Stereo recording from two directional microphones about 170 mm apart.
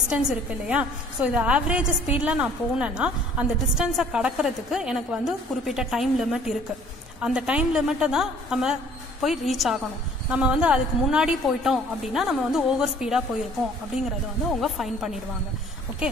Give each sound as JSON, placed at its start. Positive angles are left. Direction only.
{"t": 0.7, "sound": "a woman's voice", "side_deg": -5}
{"t": 14.5, "sound": "a woman's voice", "side_deg": 0}